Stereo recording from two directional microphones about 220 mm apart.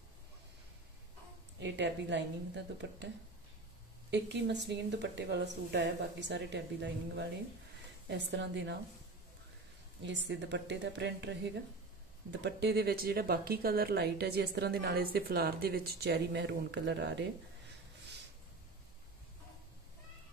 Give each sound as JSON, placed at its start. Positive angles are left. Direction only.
{"t": 1.6, "sound": "speech", "side_deg": -55}
{"t": 4.1, "sound": "speech", "side_deg": -50}
{"t": 10.0, "sound": "speech", "side_deg": -55}